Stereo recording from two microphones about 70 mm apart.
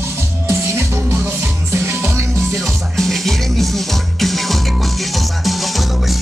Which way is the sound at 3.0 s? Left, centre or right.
Centre.